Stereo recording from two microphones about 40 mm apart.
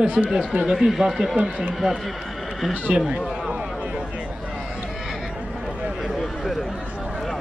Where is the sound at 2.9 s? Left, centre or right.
Right.